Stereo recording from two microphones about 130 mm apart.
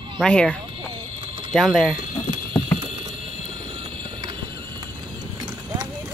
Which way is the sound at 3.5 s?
40° right (ahead or behind).